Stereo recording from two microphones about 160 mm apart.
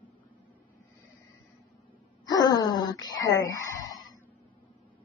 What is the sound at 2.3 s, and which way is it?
Wail, 25° left (ahead or behind).